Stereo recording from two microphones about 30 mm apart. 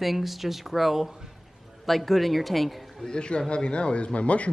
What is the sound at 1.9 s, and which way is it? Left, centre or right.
A woman's voice, centre.